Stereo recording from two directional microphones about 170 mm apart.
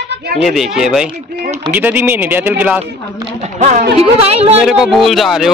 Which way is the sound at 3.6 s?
45° right (ahead or behind).